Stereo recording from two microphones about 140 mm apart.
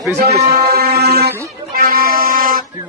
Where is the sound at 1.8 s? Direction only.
90° right.